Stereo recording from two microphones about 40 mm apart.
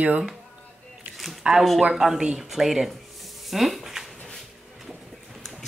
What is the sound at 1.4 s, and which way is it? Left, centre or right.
Speech, right.